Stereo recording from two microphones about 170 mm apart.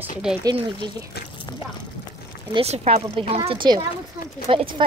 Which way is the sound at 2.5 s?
40° right (ahead or behind).